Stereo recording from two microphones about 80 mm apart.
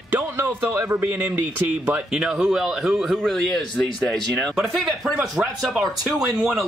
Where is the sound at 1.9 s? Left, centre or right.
Centre.